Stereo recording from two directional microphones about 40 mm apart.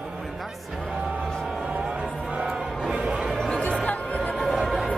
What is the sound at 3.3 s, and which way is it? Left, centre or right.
Music, centre.